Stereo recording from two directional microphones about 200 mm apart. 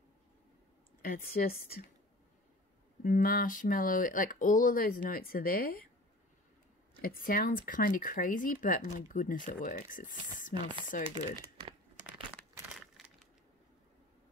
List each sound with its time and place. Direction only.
1.0 s speech: 45° left (ahead or behind)
3.0 s speech: 45° left (ahead or behind)
7.0 s speech: 45° left (ahead or behind)
10.5 s speech: 25° right (ahead or behind)
10.9 s speech: 40° left (ahead or behind)
12.6 s keys jangling: centre (ahead or behind)